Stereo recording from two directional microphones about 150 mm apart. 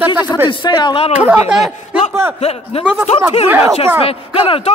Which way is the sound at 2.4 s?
40° left (ahead or behind).